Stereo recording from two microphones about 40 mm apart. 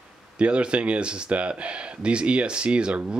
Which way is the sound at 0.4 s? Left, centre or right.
Right.